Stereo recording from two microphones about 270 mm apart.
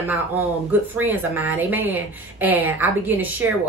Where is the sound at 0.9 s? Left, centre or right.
Centre.